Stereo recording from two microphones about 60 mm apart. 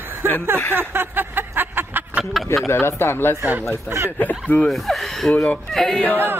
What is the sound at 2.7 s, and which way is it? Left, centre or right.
Speech, left.